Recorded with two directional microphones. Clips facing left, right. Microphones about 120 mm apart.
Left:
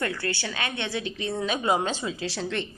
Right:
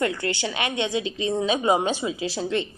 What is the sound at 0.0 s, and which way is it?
Speech, 20° right (ahead or behind).